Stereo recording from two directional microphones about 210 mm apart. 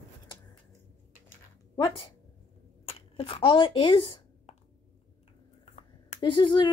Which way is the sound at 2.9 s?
30° left (ahead or behind).